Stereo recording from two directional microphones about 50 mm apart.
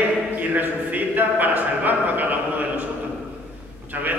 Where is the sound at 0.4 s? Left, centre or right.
Right.